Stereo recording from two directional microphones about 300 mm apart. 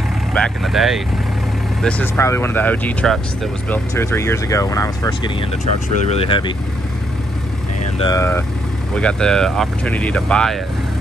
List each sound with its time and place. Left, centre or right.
0.3 s speech: centre
7.8 s speech: centre